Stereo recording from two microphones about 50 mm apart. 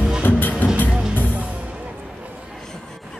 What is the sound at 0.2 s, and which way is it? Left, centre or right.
Music, left.